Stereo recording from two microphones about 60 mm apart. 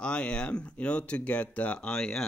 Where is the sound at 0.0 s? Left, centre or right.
Centre.